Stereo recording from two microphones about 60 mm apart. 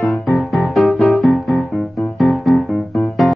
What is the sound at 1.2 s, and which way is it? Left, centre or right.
Music, centre.